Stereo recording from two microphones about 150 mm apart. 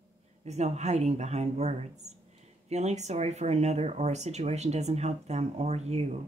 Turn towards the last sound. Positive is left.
turn(degrees=-45)  # may be behind; listen again after turning